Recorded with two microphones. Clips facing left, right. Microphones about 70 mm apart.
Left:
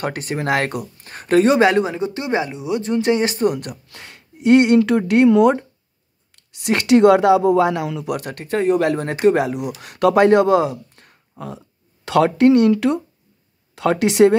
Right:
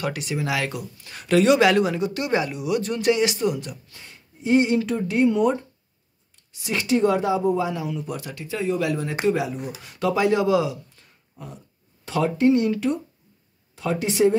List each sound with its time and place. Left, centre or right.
0.0 s speech: left
3.4 s speech: left
3.9 s speech: left
6.3 s speech: left
11.3 s speech: left